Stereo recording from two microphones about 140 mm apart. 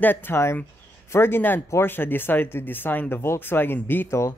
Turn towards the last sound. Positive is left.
turn(degrees=20)  # may be behind; listen again after turning